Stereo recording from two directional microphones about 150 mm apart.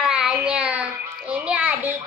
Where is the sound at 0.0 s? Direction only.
5° right (ahead or behind).